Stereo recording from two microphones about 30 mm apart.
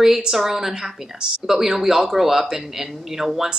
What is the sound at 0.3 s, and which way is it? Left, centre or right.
Speech, centre.